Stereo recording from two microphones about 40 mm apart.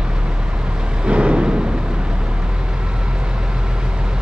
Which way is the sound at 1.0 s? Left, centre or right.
Right.